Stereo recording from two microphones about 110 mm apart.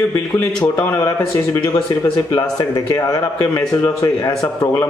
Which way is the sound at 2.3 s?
35° left (ahead or behind).